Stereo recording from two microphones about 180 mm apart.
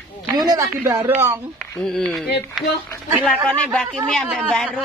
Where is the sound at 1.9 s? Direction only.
Centre (ahead or behind).